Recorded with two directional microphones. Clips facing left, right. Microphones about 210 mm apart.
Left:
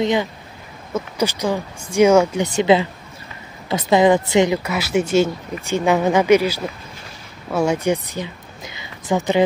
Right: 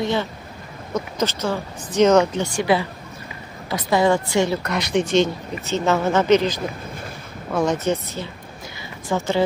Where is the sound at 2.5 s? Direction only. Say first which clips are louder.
Left 5 dB; 20° left (ahead or behind).